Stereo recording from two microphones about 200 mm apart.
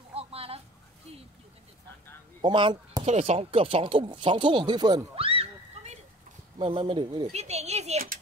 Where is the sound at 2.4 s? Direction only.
25° right (ahead or behind).